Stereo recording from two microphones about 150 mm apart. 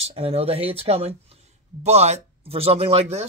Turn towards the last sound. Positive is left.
turn(degrees=-45)  # may be behind; listen again after turning